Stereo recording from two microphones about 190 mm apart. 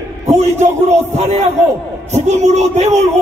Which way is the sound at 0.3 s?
35° right (ahead or behind).